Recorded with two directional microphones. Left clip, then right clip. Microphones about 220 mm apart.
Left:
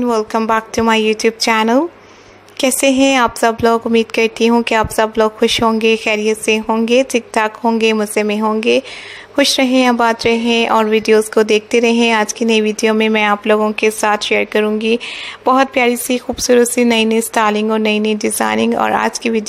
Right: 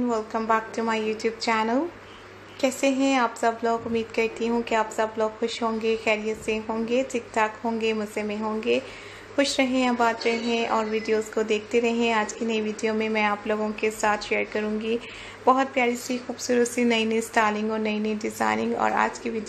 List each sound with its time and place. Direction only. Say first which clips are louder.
0.0 s a woman's voice: left 11 dB; 40° left (ahead or behind)